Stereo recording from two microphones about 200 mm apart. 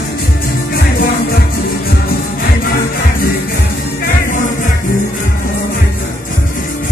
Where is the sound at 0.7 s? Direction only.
50° left (ahead or behind).